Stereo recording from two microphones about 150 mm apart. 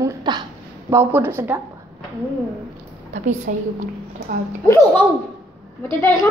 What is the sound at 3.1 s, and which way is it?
Speech, 50° right (ahead or behind).